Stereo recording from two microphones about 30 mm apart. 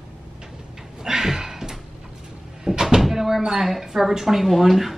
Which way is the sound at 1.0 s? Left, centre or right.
Centre.